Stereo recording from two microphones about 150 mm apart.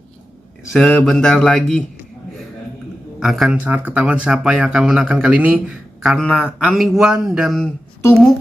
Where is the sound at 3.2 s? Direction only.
Centre (ahead or behind).